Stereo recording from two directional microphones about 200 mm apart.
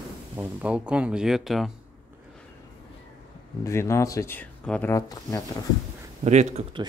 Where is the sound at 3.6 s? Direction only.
15° left (ahead or behind).